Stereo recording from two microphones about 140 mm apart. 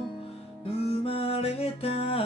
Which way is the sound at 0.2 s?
45° left (ahead or behind).